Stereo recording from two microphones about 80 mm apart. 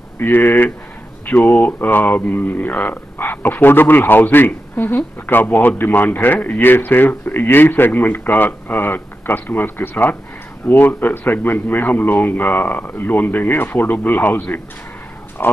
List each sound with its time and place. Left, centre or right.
0.2 s speech: left